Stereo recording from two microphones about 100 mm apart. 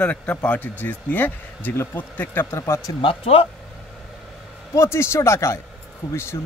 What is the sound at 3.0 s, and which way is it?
Speech, 75° left (ahead or behind).